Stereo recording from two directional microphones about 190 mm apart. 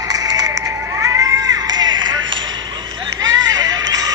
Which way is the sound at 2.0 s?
85° right.